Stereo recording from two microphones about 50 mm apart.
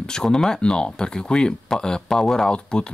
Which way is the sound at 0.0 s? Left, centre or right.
Centre.